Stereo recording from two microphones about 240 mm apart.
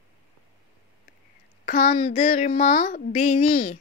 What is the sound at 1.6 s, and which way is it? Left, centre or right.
A child's voice, left.